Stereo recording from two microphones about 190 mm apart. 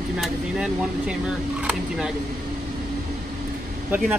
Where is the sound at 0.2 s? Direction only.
5° right (ahead or behind).